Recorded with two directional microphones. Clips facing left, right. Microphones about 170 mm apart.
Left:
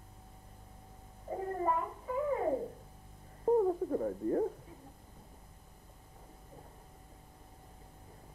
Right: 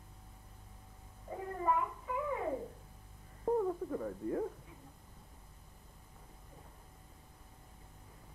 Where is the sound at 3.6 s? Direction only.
40° left (ahead or behind).